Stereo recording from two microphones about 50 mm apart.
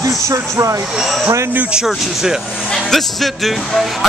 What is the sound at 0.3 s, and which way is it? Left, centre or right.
Speech, right.